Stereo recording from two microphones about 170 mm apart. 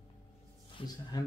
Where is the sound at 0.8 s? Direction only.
25° left (ahead or behind).